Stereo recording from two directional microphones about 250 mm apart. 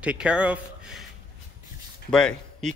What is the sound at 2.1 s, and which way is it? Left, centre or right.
Speech, centre.